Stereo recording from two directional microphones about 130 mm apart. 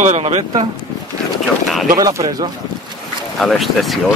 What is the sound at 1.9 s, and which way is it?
Speech, 25° right (ahead or behind).